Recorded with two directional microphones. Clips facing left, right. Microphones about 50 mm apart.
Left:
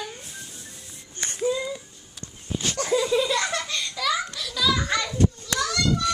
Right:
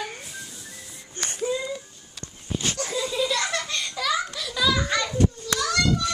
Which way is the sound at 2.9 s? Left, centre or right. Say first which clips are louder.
Left 5 dB; centre.